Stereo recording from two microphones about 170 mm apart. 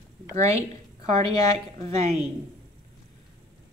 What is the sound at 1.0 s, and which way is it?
Speech, 40° right (ahead or behind).